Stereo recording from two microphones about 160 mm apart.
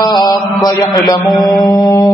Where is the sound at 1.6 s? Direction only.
25° left (ahead or behind).